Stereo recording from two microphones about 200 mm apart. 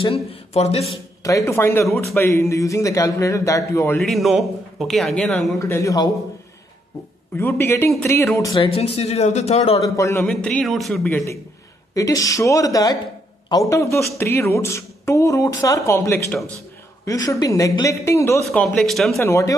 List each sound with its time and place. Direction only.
0.0 s speech: 30° left (ahead or behind)
1.2 s a man's voice: 15° left (ahead or behind)
7.3 s a man's voice: 10° left (ahead or behind)
8.6 s speech: 30° left (ahead or behind)
9.9 s a man's voice: 15° left (ahead or behind)
18.4 s a man's voice: centre (ahead or behind)
19.1 s a man's voice: 15° left (ahead or behind)